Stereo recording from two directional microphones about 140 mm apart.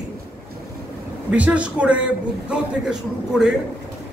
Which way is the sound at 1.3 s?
10° right (ahead or behind).